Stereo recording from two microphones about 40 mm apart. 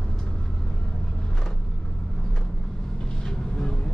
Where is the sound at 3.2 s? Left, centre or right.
Left.